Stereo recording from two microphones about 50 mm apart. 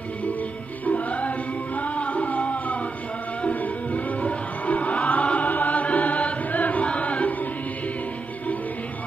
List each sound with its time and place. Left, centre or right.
0.8 s music: left